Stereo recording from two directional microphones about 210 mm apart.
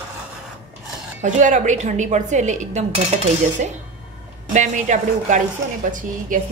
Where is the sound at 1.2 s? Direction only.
35° right (ahead or behind).